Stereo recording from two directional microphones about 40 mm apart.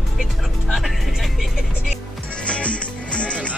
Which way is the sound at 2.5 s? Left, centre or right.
Left.